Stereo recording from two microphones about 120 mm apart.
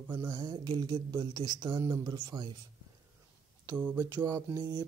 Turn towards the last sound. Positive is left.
turn(degrees=-35)  # may be behind; listen again after turning